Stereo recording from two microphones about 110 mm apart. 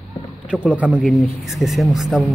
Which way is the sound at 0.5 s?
10° right (ahead or behind).